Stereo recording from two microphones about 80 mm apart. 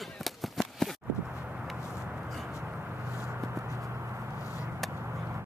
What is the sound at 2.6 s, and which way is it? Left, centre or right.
Vehicle, right.